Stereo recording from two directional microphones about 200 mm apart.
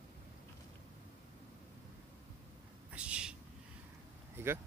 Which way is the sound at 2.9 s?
5° right (ahead or behind).